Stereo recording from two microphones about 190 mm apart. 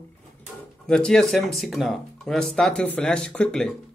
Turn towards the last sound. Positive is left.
turn(degrees=5)  # may be behind; listen again after turning